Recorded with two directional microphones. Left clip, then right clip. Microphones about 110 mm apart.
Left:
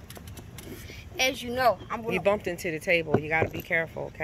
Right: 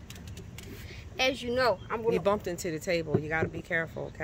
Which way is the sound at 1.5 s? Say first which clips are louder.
Left 2 dB; 45° right (ahead or behind).